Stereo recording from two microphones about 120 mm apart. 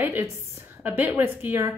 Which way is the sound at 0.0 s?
15° right (ahead or behind).